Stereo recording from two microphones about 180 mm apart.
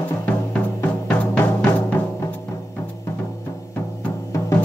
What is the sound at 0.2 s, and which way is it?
Drum, 10° left (ahead or behind).